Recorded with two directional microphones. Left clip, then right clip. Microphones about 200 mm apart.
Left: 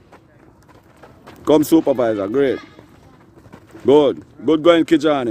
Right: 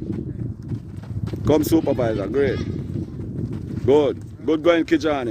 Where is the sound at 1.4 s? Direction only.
5° left (ahead or behind).